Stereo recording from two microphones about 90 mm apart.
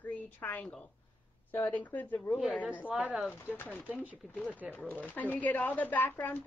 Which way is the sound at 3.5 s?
20° left (ahead or behind).